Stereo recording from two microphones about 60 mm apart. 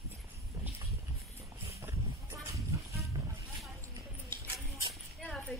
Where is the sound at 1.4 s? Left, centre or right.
Right.